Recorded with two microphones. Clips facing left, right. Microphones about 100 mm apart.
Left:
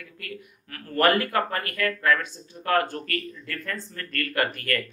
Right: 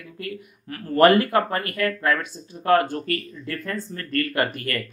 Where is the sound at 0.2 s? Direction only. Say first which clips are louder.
Right 7 dB; 20° right (ahead or behind).